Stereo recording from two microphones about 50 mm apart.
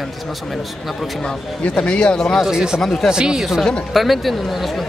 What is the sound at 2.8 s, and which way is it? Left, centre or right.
Speech, centre.